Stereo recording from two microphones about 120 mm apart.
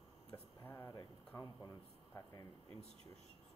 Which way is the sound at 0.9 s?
30° left (ahead or behind).